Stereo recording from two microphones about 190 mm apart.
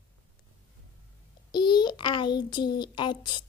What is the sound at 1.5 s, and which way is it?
A child's voice, 25° left (ahead or behind).